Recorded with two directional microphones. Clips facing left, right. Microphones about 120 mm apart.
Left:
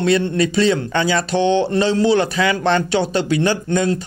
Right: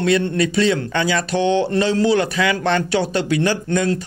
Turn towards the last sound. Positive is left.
turn(degrees=25)  # may be behind; listen again after turning